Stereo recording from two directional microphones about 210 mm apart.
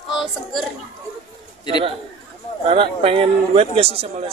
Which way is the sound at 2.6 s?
25° right (ahead or behind).